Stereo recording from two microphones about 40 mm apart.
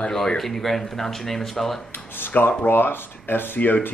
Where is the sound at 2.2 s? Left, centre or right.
Left.